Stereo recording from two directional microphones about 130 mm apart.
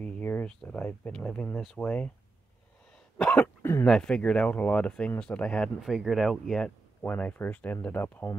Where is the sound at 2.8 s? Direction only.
5° left (ahead or behind).